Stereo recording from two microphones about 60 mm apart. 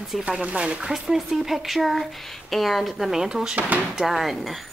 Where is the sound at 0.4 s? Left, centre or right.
Centre.